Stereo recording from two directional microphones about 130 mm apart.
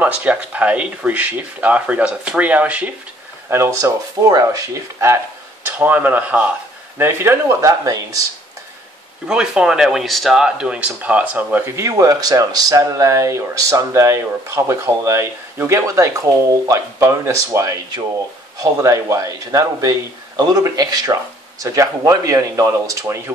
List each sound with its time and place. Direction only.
0.0 s speech: 10° right (ahead or behind)
5.7 s speech: 15° right (ahead or behind)
9.3 s speech: 5° right (ahead or behind); by 23.3 s 20° right (ahead or behind)